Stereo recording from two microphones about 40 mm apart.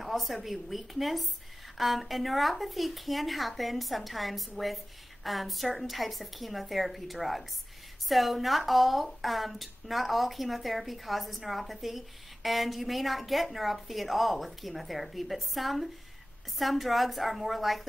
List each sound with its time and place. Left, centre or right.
0.0 s a woman's voice: centre